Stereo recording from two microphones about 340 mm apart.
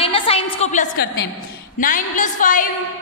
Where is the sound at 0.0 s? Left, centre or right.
Centre.